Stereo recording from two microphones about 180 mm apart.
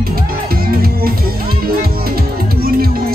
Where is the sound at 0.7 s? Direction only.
55° right (ahead or behind).